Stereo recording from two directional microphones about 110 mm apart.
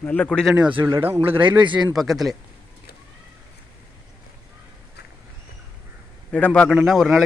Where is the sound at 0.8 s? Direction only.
25° right (ahead or behind).